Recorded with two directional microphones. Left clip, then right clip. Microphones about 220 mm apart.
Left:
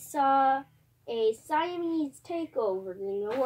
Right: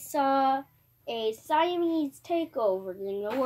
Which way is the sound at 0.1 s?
45° right (ahead or behind).